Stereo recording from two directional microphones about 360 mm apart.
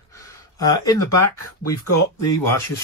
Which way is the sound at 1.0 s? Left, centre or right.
Left.